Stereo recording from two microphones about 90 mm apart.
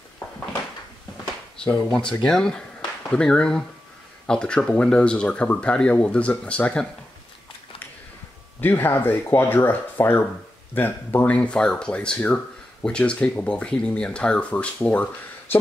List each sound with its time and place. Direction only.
1.6 s speech: 10° left (ahead or behind)
8.5 s speech: 20° left (ahead or behind)